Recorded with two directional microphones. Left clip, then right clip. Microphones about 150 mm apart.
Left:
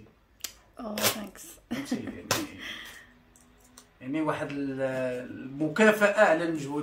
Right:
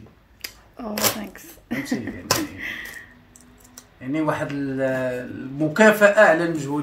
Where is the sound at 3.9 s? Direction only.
5° left (ahead or behind).